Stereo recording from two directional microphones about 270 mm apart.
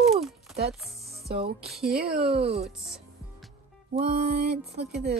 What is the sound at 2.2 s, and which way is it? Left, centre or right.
Music, right.